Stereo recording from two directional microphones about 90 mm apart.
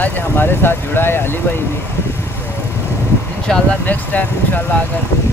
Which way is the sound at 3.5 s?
5° left (ahead or behind).